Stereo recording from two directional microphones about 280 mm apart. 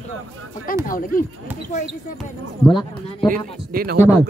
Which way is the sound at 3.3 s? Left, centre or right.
Right.